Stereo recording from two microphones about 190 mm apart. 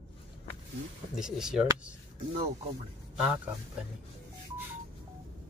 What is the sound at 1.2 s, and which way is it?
Speech, 5° right (ahead or behind).